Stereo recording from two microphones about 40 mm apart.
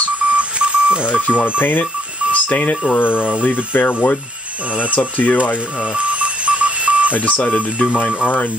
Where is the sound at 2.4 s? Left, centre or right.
Left.